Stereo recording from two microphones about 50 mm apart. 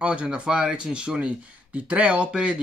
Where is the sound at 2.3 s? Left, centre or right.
Centre.